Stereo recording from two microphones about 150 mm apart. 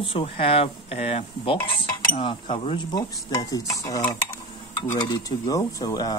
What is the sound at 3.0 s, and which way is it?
Speech, 25° left (ahead or behind).